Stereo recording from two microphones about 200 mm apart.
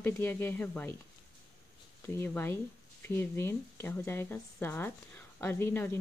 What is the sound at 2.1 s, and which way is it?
A woman's voice, 10° left (ahead or behind).